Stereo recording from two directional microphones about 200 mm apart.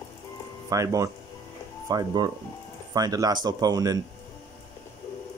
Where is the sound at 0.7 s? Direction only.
15° right (ahead or behind).